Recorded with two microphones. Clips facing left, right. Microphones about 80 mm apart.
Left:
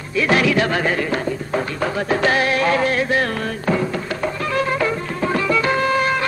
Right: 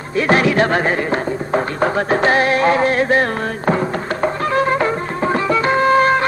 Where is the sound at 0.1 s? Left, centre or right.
Right.